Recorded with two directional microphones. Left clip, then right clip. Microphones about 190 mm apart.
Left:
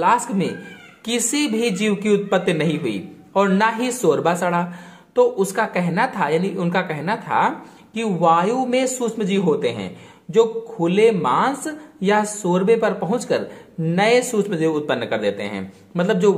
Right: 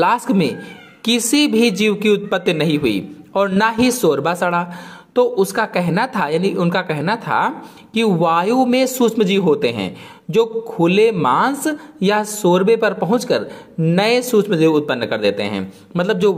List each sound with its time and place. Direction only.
0.0 s a woman's voice: 30° right (ahead or behind)